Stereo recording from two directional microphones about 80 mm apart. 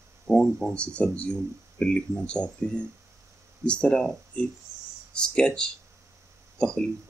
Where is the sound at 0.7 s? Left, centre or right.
Centre.